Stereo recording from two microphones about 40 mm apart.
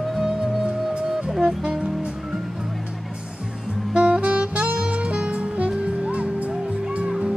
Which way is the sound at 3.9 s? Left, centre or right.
Right.